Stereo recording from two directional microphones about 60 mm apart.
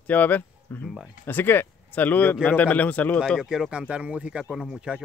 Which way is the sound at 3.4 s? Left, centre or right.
Centre.